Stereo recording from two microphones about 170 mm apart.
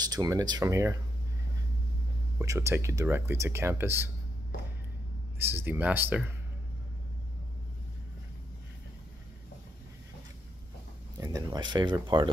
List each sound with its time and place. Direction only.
0.0 s speech: 25° right (ahead or behind)
2.3 s speech: 15° right (ahead or behind)
5.5 s speech: 10° right (ahead or behind)
11.1 s speech: 20° right (ahead or behind)